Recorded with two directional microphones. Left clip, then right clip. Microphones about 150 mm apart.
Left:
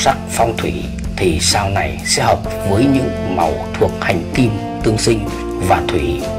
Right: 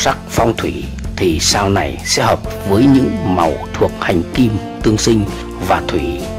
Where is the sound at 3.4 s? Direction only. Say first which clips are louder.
Even; 20° right (ahead or behind).